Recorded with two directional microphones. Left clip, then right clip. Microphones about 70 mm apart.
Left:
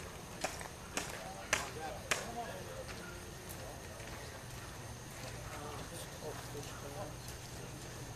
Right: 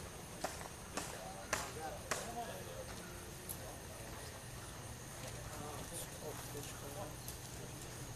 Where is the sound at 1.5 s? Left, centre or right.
Left.